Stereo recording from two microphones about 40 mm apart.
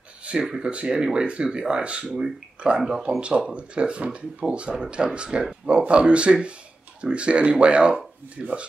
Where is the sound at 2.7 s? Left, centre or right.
Centre.